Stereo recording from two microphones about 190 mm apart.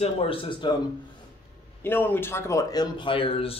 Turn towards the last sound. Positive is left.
turn(degrees=30)  # may be behind; listen again after turning